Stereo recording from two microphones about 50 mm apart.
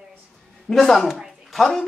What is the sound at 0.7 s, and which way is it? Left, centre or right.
Speech, centre.